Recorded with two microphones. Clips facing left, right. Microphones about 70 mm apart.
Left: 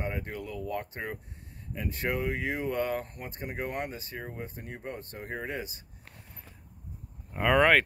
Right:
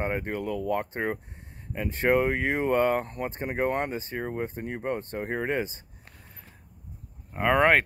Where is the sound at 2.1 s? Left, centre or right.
Right.